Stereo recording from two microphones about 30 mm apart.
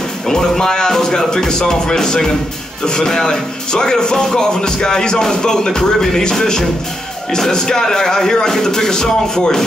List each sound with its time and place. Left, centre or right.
0.3 s speech: centre